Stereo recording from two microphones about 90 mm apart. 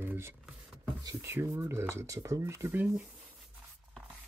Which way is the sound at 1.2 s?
25° right (ahead or behind).